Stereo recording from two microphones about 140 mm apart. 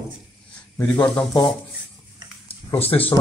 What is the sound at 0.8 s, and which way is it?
Speech, 10° left (ahead or behind).